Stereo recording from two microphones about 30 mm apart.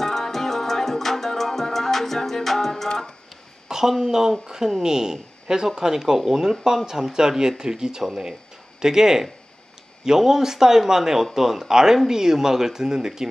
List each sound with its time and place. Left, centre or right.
0.0 s music: centre
3.6 s a sound: centre
4.0 s a man's voice: centre
6.1 s speech: centre
6.9 s speech: centre
8.0 s a man's voice: centre